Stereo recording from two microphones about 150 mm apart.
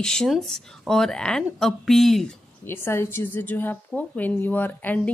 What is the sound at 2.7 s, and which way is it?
A woman's voice, 15° left (ahead or behind).